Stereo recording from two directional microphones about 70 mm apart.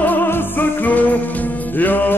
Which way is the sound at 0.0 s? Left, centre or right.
Left.